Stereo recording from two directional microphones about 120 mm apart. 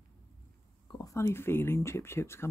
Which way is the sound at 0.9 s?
25° left (ahead or behind).